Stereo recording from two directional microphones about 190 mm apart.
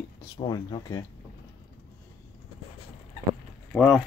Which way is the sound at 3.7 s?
Centre (ahead or behind).